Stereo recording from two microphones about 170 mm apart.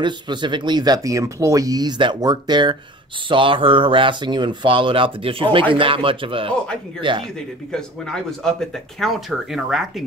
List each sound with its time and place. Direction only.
0.0 s speech: 25° right (ahead or behind)
7.3 s speech: 5° left (ahead or behind)